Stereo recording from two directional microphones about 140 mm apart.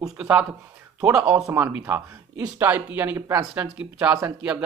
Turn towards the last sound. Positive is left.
turn(degrees=-10)  # may be behind; listen again after turning